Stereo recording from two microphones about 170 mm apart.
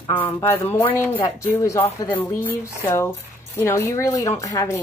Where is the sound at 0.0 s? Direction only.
15° left (ahead or behind).